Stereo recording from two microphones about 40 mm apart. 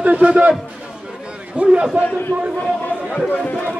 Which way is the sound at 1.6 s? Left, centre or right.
Centre.